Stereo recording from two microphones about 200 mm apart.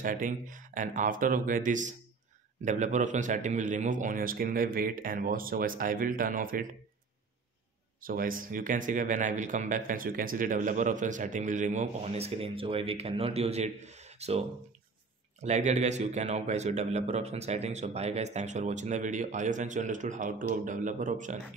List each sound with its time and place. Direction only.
0.0 s speech: 40° right (ahead or behind)
8.0 s speech: 45° right (ahead or behind)
15.4 s speech: 35° right (ahead or behind)